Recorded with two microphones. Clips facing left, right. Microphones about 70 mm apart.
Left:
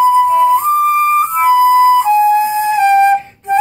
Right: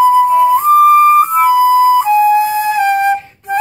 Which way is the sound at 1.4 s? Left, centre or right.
Left.